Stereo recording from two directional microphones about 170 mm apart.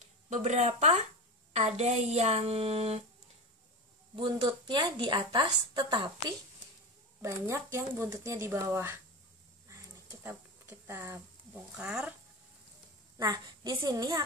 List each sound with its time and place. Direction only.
0.3 s a woman's voice: 45° right (ahead or behind)
4.1 s a woman's voice: 25° right (ahead or behind)
10.0 s a sound: 15° right (ahead or behind)
11.7 s speech: 5° right (ahead or behind)
13.2 s a woman's voice: 20° right (ahead or behind)